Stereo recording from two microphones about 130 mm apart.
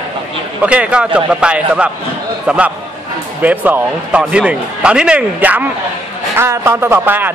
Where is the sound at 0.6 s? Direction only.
10° right (ahead or behind).